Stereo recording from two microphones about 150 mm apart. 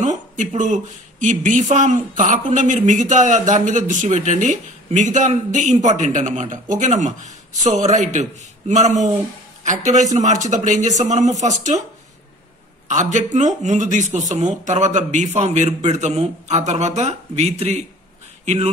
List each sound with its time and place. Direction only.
0.0 s a sound: 55° right (ahead or behind)
1.2 s speech: 60° right (ahead or behind)
12.8 s speech: 55° right (ahead or behind)